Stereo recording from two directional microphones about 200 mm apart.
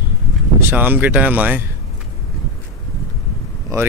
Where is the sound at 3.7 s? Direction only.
15° right (ahead or behind).